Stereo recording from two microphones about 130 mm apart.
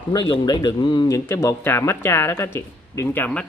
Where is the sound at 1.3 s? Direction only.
20° left (ahead or behind).